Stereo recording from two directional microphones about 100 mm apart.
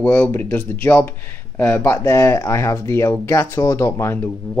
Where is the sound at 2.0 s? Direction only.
30° left (ahead or behind).